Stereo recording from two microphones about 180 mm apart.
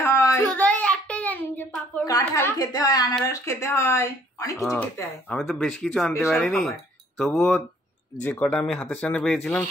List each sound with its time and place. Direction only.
0.0 s child singing: 15° left (ahead or behind)
2.0 s a woman's voice: 20° left (ahead or behind)
4.6 s speech: 5° left (ahead or behind)